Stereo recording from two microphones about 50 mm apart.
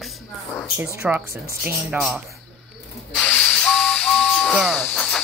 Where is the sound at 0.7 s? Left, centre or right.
Right.